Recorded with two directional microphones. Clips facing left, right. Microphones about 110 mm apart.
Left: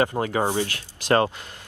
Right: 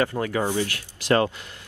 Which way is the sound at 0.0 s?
25° left (ahead or behind).